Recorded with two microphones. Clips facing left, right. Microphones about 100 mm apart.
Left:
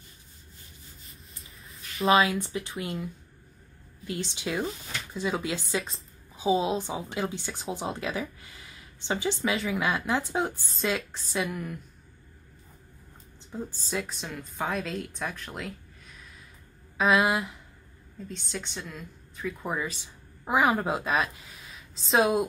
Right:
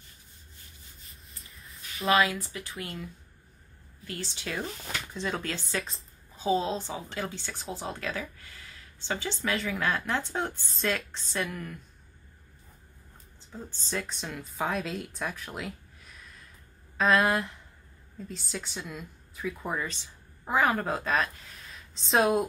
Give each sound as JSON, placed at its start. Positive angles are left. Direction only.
{"t": 1.0, "sound": "a sound", "side_deg": 0}
{"t": 2.2, "sound": "speech", "side_deg": 20}
{"t": 4.1, "sound": "a woman's voice", "side_deg": 15}
{"t": 5.8, "sound": "speech", "side_deg": 0}
{"t": 6.3, "sound": "a woman's voice", "side_deg": 15}
{"t": 9.5, "sound": "speech", "side_deg": 0}
{"t": 9.8, "sound": "a woman's voice", "side_deg": 15}
{"t": 10.7, "sound": "speech", "side_deg": 0}
{"t": 13.5, "sound": "a woman's voice", "side_deg": 10}